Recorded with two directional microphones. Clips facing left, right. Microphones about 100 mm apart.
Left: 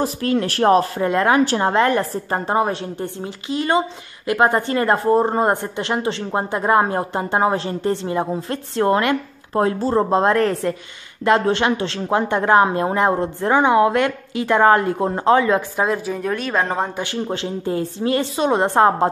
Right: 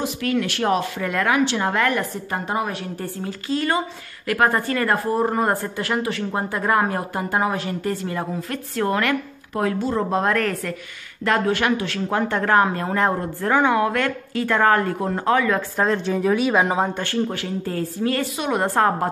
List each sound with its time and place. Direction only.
0.0 s speech: 35° left (ahead or behind)
1.4 s a woman's voice: 40° left (ahead or behind)
1.7 s speech: 30° left (ahead or behind)
15.7 s a woman's voice: 10° left (ahead or behind)
16.2 s speech: 5° right (ahead or behind)
16.9 s speech: 15° left (ahead or behind)